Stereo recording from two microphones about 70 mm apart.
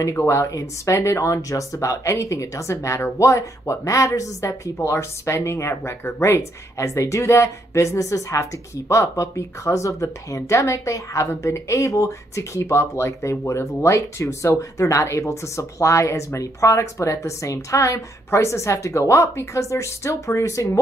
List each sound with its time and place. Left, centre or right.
0.1 s speech: left